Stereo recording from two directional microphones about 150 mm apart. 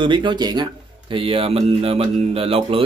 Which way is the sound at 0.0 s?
35° right (ahead or behind).